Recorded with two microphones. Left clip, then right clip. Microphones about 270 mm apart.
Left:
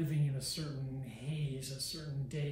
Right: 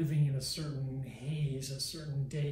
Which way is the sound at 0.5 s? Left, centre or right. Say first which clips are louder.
Right 2 dB; centre.